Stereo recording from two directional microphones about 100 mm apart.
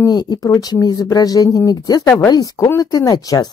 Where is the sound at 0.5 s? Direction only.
35° left (ahead or behind).